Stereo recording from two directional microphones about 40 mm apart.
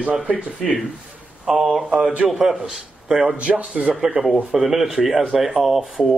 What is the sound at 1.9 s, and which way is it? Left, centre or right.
Speech, right.